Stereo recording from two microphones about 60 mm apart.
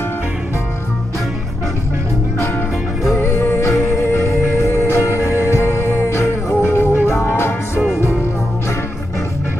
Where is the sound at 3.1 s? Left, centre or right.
Left.